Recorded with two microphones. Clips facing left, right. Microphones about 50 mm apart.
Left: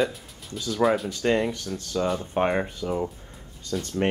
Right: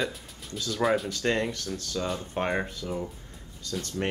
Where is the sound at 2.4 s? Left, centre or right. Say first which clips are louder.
Left 5 dB; centre.